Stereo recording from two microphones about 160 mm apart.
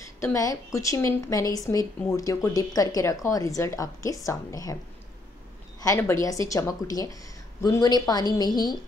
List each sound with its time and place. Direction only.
0.2 s speech: 20° left (ahead or behind)
5.8 s a woman's voice: 15° left (ahead or behind)